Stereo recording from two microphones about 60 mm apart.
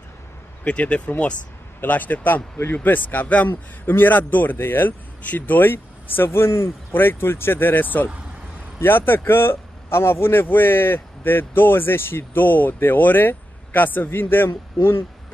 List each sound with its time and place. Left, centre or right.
0.7 s a man's voice: left
6.9 s a man's voice: left